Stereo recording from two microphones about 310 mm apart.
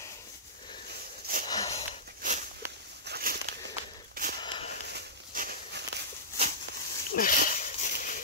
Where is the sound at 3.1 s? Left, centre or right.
Right.